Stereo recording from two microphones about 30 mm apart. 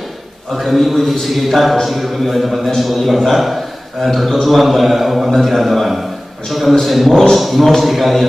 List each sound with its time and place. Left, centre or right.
0.6 s a man's voice: centre